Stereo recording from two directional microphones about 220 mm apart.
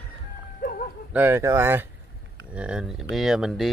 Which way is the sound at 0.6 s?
40° left (ahead or behind).